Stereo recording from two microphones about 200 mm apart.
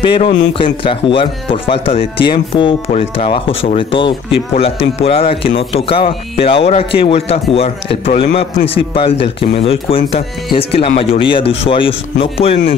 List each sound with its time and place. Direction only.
0.0 s speech: 25° left (ahead or behind)